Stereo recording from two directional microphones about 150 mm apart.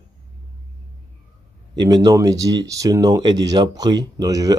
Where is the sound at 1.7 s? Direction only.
25° right (ahead or behind).